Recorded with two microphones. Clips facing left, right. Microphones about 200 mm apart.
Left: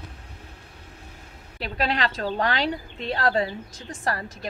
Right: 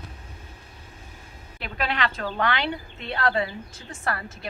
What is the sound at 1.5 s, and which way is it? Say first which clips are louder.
A woman's voice: left 2 dB; 35° left (ahead or behind).